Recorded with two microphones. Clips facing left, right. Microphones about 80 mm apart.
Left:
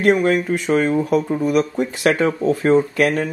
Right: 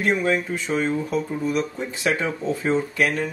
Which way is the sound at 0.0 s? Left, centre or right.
Left.